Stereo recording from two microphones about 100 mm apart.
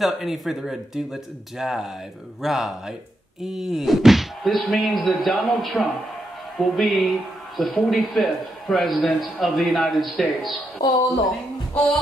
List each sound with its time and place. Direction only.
0.0 s speech: centre (ahead or behind)
10.8 s a woman's voice: 40° left (ahead or behind)
11.7 s music: 10° left (ahead or behind)